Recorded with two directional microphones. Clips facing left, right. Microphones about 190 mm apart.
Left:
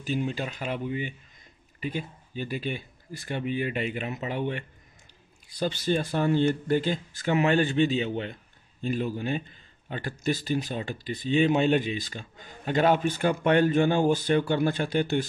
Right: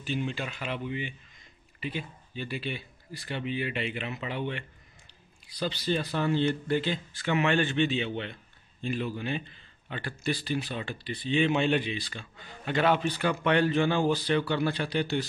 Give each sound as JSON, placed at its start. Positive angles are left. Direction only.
{"t": 0.0, "sound": "a man's voice", "side_deg": 40}